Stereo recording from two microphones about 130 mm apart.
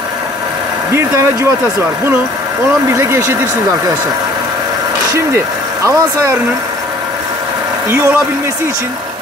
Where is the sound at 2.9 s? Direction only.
25° right (ahead or behind).